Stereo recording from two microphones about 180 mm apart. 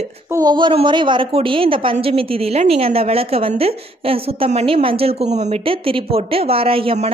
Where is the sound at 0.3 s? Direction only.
20° right (ahead or behind).